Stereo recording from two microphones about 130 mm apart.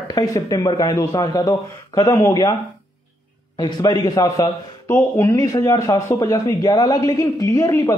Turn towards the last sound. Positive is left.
turn(degrees=25)  # may be behind; listen again after turning